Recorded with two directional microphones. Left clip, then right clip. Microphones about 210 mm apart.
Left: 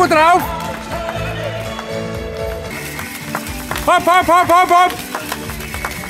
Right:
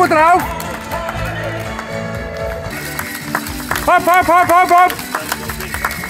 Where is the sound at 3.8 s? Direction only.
20° left (ahead or behind).